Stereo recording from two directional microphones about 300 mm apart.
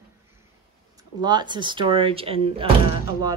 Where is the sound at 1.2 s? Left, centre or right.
Centre.